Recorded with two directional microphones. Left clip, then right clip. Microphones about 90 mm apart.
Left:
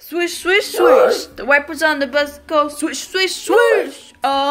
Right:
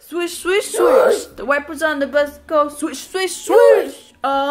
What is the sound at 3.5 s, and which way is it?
Speech, 25° right (ahead or behind).